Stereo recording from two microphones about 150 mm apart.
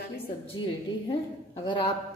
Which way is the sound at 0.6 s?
30° left (ahead or behind).